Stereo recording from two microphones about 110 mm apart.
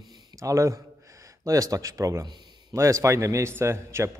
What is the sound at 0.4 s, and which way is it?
A man's voice, 30° right (ahead or behind).